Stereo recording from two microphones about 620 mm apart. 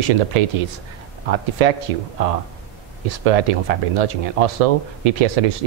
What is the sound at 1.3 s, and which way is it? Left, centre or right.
Speech, right.